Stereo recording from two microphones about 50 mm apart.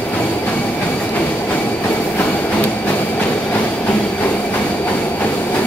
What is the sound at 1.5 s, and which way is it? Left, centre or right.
Train, left.